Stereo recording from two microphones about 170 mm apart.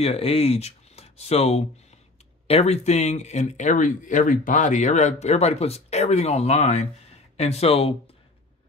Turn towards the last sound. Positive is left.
turn(degrees=35)  # may be behind; listen again after turning